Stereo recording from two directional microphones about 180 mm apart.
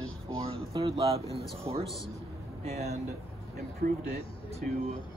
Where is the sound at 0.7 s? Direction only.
35° right (ahead or behind).